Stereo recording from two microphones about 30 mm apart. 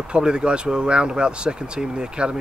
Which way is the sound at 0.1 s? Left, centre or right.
Right.